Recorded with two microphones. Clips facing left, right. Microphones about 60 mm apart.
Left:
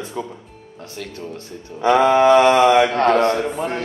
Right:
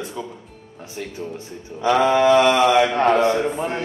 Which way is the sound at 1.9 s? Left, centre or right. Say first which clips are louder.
Left 3 dB; left.